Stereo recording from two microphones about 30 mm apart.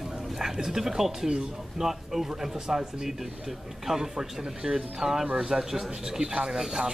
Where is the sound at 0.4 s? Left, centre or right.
Centre.